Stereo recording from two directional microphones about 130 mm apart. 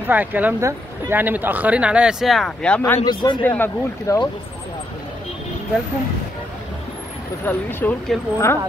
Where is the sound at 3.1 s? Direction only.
35° left (ahead or behind).